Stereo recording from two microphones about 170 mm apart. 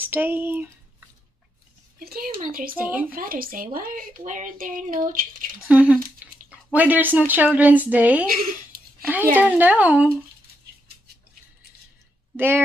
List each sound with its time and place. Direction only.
0.0 s speech: 10° right (ahead or behind)
2.0 s speech: 60° right (ahead or behind)
2.7 s speech: 10° right (ahead or behind)
3.1 s speech: 55° right (ahead or behind)
5.7 s speech: 10° right (ahead or behind)
8.3 s speech: 60° right (ahead or behind)
9.0 s speech: 10° right (ahead or behind)
12.4 s speech: 15° right (ahead or behind)